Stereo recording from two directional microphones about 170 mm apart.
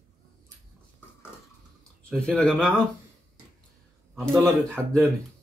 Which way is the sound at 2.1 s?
5° left (ahead or behind).